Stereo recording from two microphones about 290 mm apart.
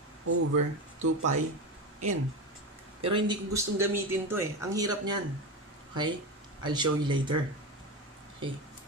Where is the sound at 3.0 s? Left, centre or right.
Centre.